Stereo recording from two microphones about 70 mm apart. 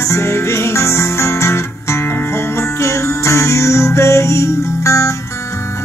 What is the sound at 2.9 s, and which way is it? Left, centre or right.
Music, left.